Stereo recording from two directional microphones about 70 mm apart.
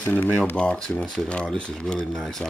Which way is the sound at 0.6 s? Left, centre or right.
Centre.